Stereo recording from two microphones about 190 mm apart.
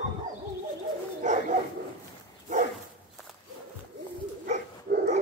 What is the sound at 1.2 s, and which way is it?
Dog, 40° right (ahead or behind).